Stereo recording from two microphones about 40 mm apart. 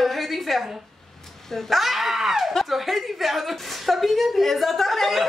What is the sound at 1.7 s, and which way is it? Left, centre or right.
A woman's voice, centre.